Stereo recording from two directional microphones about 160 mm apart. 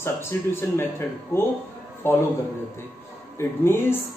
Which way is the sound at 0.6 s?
15° left (ahead or behind).